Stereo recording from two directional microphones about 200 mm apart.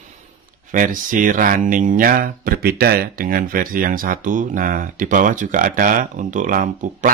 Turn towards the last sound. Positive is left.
turn(degrees=-40)  # may be behind; listen again after turning